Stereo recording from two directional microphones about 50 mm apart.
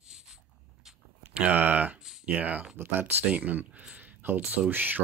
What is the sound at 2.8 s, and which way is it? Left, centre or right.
Speech, right.